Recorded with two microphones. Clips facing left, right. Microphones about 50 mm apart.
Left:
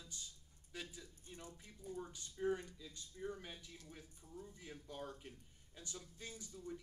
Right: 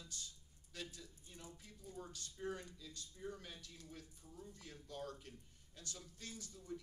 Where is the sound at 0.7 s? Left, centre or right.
Centre.